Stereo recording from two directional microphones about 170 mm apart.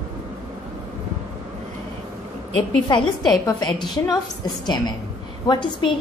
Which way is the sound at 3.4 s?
25° left (ahead or behind).